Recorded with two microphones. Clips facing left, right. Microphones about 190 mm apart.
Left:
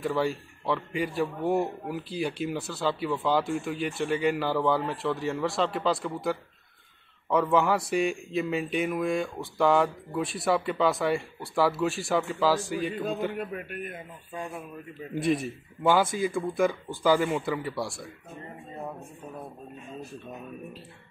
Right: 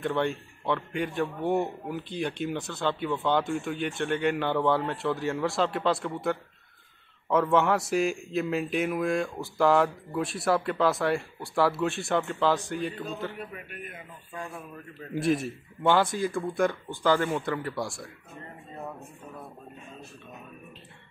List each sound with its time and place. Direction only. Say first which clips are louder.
0.0 s speech: even; 5° left (ahead or behind)
13.2 s a man's voice: left 5 dB; 15° left (ahead or behind)
15.1 s speech: even; centre (ahead or behind)